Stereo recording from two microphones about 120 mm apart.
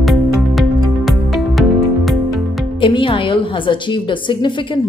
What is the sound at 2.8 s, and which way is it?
Speech, 45° left (ahead or behind).